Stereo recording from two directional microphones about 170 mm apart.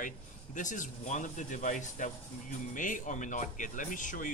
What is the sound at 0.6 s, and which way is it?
Speech, 50° left (ahead or behind).